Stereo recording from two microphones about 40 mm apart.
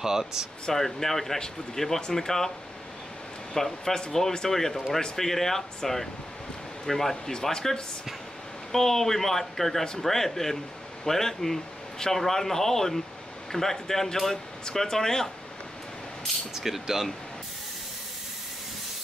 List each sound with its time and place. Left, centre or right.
0.0 s speech: centre
0.7 s speech: centre
3.5 s speech: centre
16.5 s speech: centre